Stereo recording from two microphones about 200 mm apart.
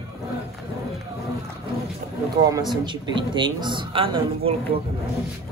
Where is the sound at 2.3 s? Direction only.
20° right (ahead or behind).